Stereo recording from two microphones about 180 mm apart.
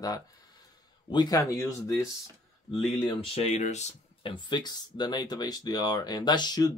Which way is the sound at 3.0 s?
30° left (ahead or behind).